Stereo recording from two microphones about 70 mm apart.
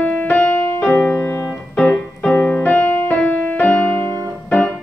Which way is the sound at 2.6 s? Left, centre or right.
Left.